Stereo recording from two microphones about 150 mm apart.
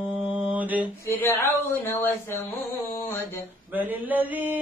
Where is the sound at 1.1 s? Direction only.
15° left (ahead or behind).